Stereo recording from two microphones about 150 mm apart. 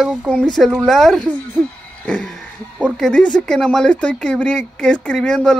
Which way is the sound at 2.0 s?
10° left (ahead or behind).